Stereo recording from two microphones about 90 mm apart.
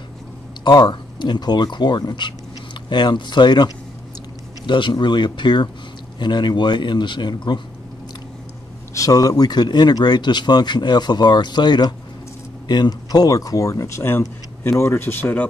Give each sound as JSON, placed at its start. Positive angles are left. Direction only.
{"t": 0.7, "sound": "speech", "side_deg": 55}
{"t": 8.9, "sound": "speech", "side_deg": 40}